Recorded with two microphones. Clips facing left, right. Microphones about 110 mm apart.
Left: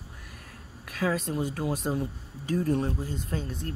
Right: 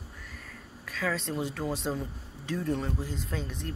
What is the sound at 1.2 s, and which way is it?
Speech, 10° left (ahead or behind).